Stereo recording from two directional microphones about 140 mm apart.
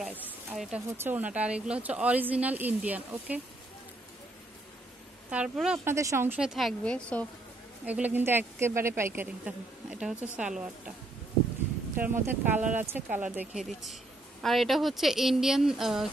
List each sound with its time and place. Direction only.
0.6 s a woman's voice: 5° right (ahead or behind)
5.3 s a woman's voice: 5° right (ahead or behind)
5.9 s a woman's voice: 20° right (ahead or behind)
6.4 s a woman's voice: centre (ahead or behind)
7.8 s a woman's voice: 10° right (ahead or behind)
12.0 s a woman's voice: 15° right (ahead or behind)